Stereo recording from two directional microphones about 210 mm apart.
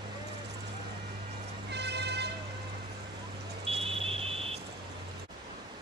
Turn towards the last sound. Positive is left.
turn(degrees=-25)  # may be behind; listen again after turning